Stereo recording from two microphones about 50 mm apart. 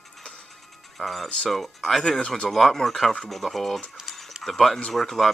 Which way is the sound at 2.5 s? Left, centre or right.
Centre.